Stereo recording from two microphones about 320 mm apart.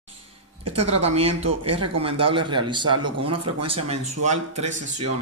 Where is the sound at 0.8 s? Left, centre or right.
Centre.